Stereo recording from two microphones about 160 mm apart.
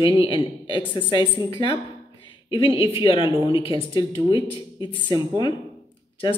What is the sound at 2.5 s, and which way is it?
A woman's voice, 35° left (ahead or behind).